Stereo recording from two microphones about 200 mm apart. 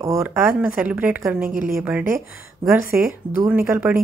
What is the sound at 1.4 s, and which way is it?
Speech, 45° right (ahead or behind).